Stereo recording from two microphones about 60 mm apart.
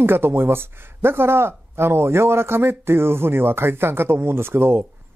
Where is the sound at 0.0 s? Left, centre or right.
Right.